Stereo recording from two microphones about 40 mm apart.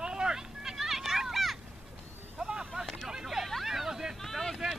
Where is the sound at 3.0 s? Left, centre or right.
Centre.